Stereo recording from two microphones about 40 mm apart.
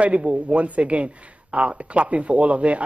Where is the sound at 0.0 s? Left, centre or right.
Right.